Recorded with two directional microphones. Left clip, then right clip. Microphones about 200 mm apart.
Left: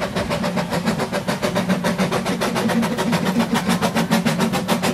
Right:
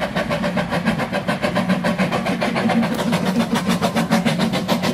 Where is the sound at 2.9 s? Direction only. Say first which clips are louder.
Even; 5° left (ahead or behind).